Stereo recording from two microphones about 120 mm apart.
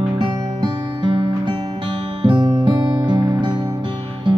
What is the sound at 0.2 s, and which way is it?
Music, 40° right (ahead or behind).